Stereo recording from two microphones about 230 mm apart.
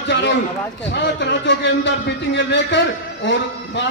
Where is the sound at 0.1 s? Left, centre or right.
Left.